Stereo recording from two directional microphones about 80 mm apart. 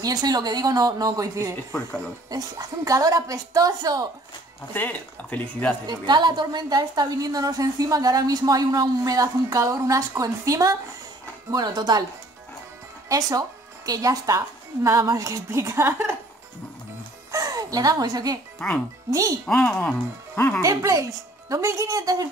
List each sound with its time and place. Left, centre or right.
0.0 s a woman's voice: right
4.7 s speech: centre
5.9 s a woman's voice: right
11.5 s speech: right
13.1 s a woman's voice: right
17.3 s speech: right
19.0 s a woman's voice: right
19.4 s a woman's voice: centre
20.6 s a woman's voice: right